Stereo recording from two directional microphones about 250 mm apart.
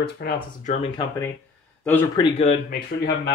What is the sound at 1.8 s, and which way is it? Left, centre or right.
Speech, centre.